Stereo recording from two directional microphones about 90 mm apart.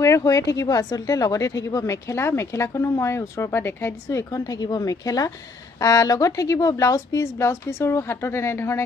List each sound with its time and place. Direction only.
0.0 s speech: 35° left (ahead or behind)